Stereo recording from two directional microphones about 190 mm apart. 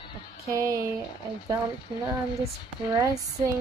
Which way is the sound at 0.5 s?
20° right (ahead or behind).